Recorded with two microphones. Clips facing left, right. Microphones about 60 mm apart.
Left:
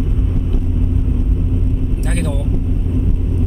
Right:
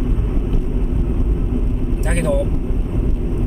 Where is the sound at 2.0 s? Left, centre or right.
Centre.